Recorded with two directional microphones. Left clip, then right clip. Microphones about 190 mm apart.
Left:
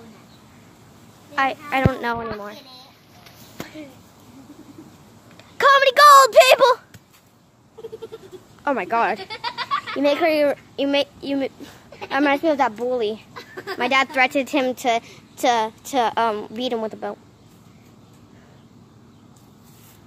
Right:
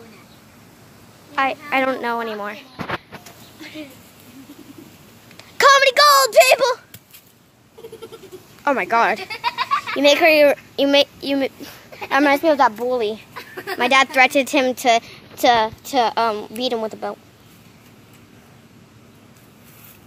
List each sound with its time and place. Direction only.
1.3 s speech: centre (ahead or behind)
2.1 s speech: 15° right (ahead or behind)
5.4 s a sound: centre (ahead or behind); by 6.8 s 20° left (ahead or behind)
8.6 s speech: centre (ahead or behind)
10.8 s a woman's voice: 5° right (ahead or behind)
13.3 s speech: 5° right (ahead or behind)